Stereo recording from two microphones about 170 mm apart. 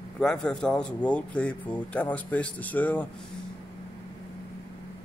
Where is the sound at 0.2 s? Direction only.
5° left (ahead or behind).